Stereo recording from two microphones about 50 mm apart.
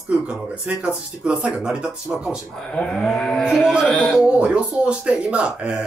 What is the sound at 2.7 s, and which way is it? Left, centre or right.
Speech, centre.